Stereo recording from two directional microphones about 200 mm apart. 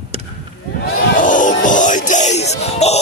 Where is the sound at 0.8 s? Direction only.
40° left (ahead or behind).